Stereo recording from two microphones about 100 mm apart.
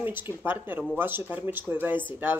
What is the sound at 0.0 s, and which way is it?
A woman's voice, 20° right (ahead or behind).